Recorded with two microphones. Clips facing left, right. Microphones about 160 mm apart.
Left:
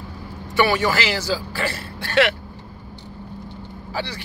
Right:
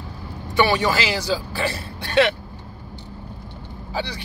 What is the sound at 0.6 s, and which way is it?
A man's voice, 20° right (ahead or behind).